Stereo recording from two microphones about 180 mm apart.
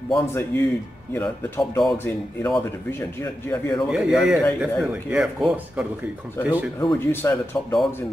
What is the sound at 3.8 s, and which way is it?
Speech, centre (ahead or behind).